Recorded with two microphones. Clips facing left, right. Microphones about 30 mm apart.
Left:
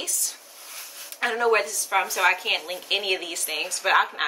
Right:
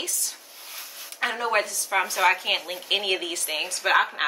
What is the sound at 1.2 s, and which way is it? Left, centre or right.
Speech, centre.